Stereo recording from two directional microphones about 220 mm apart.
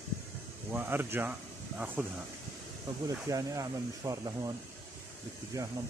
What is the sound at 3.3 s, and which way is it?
Speech, 15° right (ahead or behind).